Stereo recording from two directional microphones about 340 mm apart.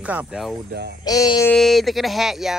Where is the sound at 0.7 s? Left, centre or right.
Right.